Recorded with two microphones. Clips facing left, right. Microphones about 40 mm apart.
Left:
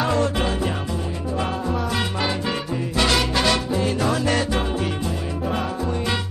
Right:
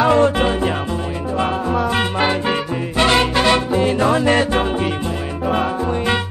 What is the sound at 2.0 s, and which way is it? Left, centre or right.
Music, right.